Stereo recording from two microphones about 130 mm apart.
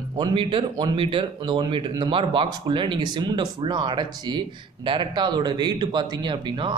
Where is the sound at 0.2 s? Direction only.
40° right (ahead or behind).